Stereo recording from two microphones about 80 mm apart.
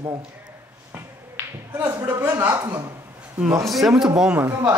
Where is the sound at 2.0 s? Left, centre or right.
Right.